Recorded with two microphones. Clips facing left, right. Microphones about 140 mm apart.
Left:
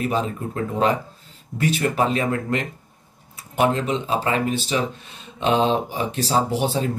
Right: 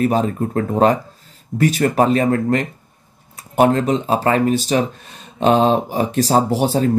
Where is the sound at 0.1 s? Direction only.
45° right (ahead or behind).